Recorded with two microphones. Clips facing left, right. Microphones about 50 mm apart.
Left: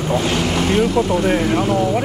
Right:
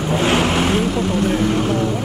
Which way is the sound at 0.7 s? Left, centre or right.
Centre.